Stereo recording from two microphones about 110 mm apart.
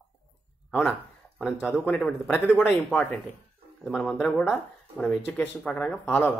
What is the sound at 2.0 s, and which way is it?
Speech, 10° left (ahead or behind).